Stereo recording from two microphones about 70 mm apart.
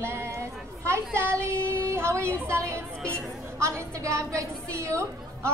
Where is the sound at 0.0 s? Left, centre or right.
Right.